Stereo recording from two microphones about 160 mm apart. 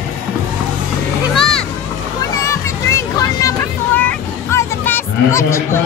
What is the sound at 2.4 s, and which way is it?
Vehicle, 20° left (ahead or behind).